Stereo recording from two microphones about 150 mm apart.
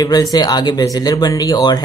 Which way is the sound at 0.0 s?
25° left (ahead or behind).